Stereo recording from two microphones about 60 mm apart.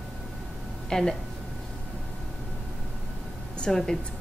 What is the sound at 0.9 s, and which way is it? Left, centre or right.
Speech, centre.